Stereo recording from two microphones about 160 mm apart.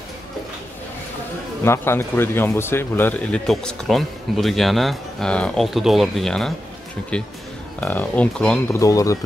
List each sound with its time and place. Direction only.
1.6 s speech: 15° left (ahead or behind)
7.8 s speech: 10° left (ahead or behind)
8.7 s speech: 20° left (ahead or behind)